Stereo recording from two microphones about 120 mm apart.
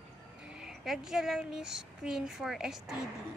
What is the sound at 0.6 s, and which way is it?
Speech, 5° right (ahead or behind).